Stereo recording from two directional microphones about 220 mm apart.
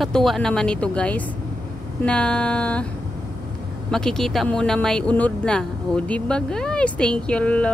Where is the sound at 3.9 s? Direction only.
Centre (ahead or behind).